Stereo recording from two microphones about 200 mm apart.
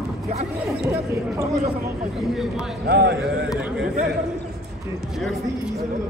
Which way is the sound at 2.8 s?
55° right (ahead or behind).